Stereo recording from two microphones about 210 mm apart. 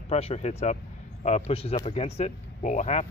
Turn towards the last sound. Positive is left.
turn(degrees=35)  # may be behind; listen again after turning